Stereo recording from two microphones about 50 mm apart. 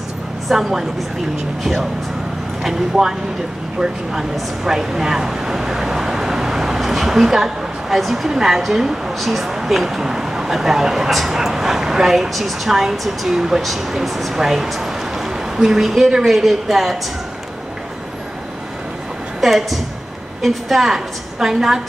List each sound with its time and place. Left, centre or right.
0.5 s a woman's voice: centre
19.4 s a woman's voice: centre